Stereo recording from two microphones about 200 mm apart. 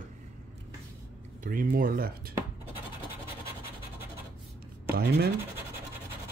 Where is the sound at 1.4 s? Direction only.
45° right (ahead or behind).